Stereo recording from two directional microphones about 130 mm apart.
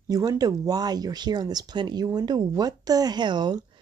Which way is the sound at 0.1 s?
30° right (ahead or behind).